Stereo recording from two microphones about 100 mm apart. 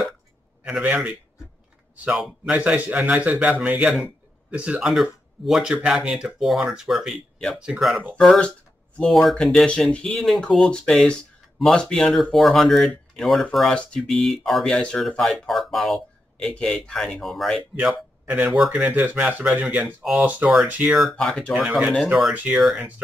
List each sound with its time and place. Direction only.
0.7 s speech: 10° right (ahead or behind)
8.2 s speech: 5° left (ahead or behind)
17.7 s speech: 15° right (ahead or behind)
20.9 s speech: centre (ahead or behind)
21.5 s speech: 5° right (ahead or behind)
22.6 s speech: centre (ahead or behind)